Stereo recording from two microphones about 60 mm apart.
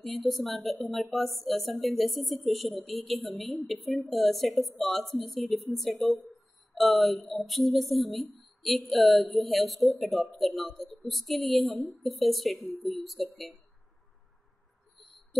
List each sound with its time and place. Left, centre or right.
0.0 s speech: centre